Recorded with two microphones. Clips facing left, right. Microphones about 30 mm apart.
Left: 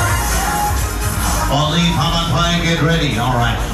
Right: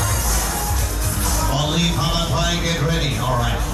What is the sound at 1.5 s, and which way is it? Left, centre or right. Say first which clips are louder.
Music: left 5 dB; left.